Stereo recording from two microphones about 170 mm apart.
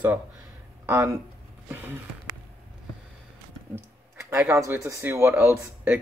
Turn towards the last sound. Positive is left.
turn(degrees=-10)  # may be behind; listen again after turning